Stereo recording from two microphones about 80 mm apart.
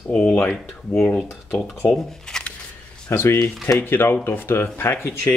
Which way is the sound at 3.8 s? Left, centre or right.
Left.